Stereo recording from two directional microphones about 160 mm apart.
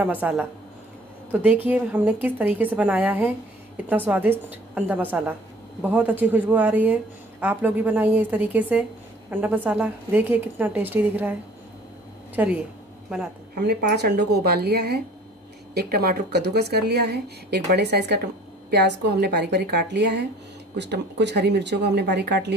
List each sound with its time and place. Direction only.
0.0 s speech: 10° right (ahead or behind)
12.4 s speech: 10° right (ahead or behind)
13.6 s speech: 85° right
15.7 s speech: 75° right (ahead or behind)